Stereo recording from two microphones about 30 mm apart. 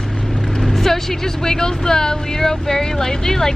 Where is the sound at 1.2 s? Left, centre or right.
Centre.